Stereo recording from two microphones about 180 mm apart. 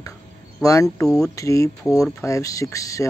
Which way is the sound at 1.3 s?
15° left (ahead or behind).